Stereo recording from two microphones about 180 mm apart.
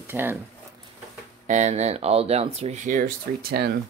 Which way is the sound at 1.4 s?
40° right (ahead or behind).